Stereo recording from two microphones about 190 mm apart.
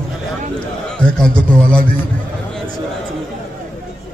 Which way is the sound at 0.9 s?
5° left (ahead or behind).